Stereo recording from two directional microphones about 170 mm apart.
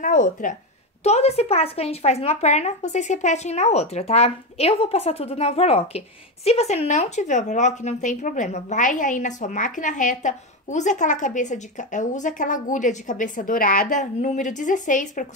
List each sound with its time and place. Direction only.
0.0 s speech: 50° left (ahead or behind)
1.0 s speech: 40° left (ahead or behind)